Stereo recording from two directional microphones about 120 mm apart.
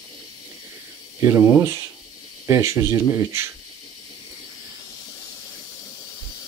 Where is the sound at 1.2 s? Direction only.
25° right (ahead or behind).